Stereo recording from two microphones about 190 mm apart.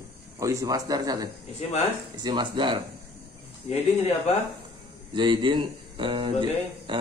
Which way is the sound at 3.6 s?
35° left (ahead or behind).